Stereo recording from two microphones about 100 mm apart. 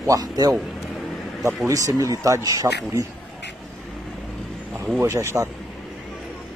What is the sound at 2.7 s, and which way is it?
Speech, 20° right (ahead or behind).